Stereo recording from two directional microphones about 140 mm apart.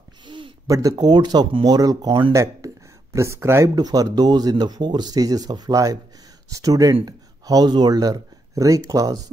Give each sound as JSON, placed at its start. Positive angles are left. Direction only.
{"t": 0.2, "sound": "a sound", "side_deg": -35}
{"t": 0.7, "sound": "speech", "side_deg": -25}
{"t": 2.3, "sound": "speech", "side_deg": -20}